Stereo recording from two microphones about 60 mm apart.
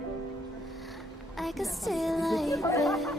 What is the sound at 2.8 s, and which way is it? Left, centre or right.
Chatter, centre.